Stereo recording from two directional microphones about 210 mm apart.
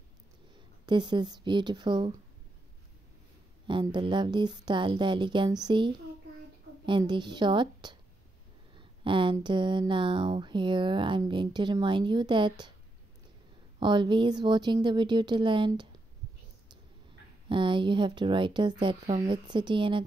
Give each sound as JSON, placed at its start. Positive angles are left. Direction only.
{"t": 0.8, "sound": "speech", "side_deg": -20}
{"t": 3.6, "sound": "speech", "side_deg": -20}
{"t": 13.7, "sound": "speech", "side_deg": -20}
{"t": 17.5, "sound": "speech", "side_deg": -25}